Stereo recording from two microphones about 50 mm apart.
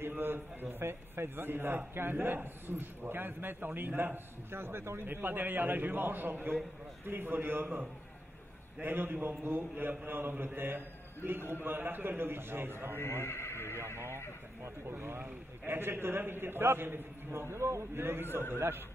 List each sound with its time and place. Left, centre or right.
0.0 s a man's voice: right
8.8 s a man's voice: right
13.0 s neigh: left
14.6 s a man's voice: right